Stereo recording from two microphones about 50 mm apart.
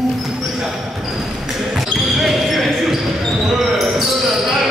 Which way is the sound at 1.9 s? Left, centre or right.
Centre.